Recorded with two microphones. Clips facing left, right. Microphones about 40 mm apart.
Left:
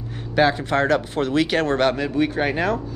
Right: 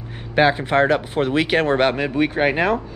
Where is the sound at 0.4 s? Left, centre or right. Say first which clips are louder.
Right 2 dB; right.